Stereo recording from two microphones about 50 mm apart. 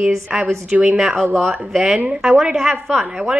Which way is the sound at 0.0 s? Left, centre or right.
Centre.